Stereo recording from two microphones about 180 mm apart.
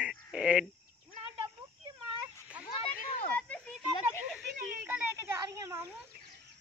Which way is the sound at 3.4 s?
5° left (ahead or behind).